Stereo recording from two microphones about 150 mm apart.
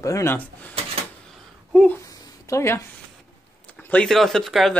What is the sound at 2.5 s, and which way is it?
A woman's voice, 20° left (ahead or behind).